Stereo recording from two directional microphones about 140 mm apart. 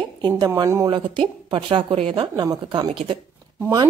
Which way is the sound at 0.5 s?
20° right (ahead or behind).